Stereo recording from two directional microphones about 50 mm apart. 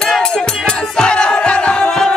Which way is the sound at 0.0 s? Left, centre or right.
Centre.